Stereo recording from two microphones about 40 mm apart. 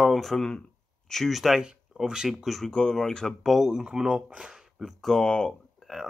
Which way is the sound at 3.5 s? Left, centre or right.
Centre.